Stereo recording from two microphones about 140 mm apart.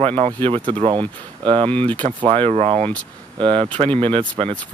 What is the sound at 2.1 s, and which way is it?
Speech, 40° right (ahead or behind).